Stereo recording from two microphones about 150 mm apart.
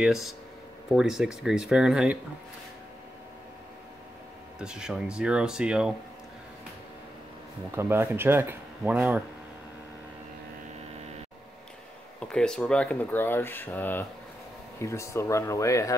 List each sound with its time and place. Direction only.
0.0 s speech: centre (ahead or behind)
4.6 s speech: 5° right (ahead or behind)
7.7 s speech: 15° right (ahead or behind)
12.2 s speech: 5° left (ahead or behind); by 16.0 s 20° left (ahead or behind)